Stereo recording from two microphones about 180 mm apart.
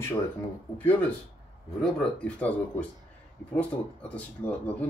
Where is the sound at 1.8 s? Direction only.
5° left (ahead or behind).